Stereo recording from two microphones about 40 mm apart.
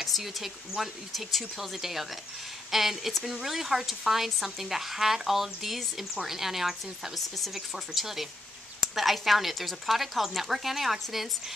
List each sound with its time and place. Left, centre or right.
0.0 s speech: centre
7.2 s speech: centre